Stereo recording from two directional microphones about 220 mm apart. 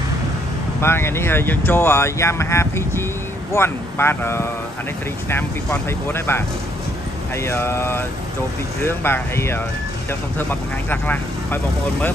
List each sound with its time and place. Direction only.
0.7 s speech: 10° left (ahead or behind)
7.4 s speech: 10° left (ahead or behind)